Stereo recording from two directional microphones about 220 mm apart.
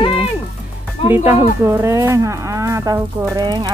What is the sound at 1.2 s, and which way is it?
Speech, 15° right (ahead or behind).